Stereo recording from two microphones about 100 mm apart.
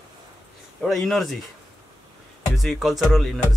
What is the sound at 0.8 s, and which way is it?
Speech, centre (ahead or behind).